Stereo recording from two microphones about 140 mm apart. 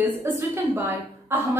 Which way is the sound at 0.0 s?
15° right (ahead or behind).